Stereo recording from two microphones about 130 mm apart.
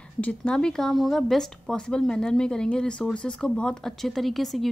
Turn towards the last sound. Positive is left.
turn(degrees=0)  # may be behind; listen again after turning